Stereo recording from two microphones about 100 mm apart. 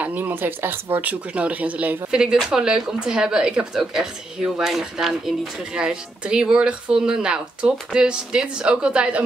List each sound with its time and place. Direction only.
0.0 s speech: 15° right (ahead or behind)